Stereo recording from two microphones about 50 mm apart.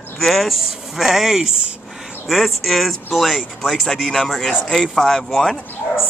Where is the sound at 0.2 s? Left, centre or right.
Centre.